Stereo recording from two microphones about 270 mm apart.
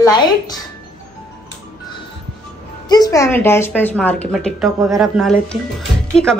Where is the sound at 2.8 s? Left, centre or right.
Centre.